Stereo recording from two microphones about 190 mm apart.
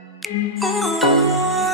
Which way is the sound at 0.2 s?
Centre (ahead or behind).